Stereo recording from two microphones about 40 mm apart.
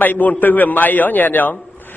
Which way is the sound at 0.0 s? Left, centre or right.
Left.